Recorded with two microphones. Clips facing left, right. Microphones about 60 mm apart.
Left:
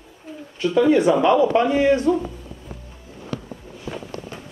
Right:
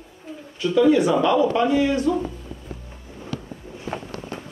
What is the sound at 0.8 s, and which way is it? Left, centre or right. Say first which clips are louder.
Speech: left 1 dB; left.